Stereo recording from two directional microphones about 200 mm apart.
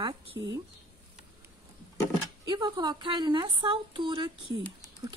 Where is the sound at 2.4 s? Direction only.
20° right (ahead or behind).